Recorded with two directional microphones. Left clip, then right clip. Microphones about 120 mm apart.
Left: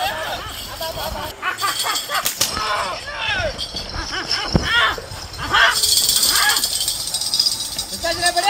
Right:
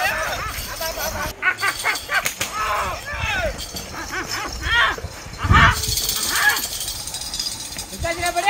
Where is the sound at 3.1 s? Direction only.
5° right (ahead or behind).